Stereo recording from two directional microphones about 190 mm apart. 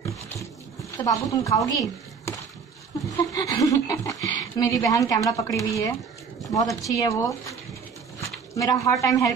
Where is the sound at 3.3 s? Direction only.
20° left (ahead or behind).